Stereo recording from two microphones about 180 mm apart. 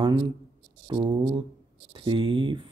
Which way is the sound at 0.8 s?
25° right (ahead or behind).